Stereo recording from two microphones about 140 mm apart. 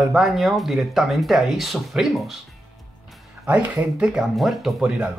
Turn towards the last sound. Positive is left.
turn(degrees=-5)  # may be behind; listen again after turning